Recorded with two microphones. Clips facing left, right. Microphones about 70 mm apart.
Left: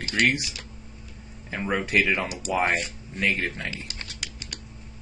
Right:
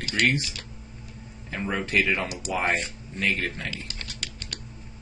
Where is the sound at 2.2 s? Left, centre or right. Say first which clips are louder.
Even; right.